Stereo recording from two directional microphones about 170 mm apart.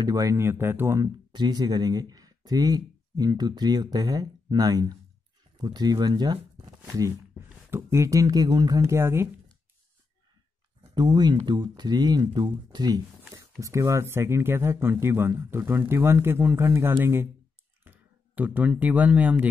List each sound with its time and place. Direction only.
0.0 s speech: 20° right (ahead or behind)
11.0 s speech: 25° right (ahead or behind); by 19.5 s 10° right (ahead or behind)